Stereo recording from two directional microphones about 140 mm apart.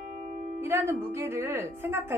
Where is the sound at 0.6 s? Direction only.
15° right (ahead or behind).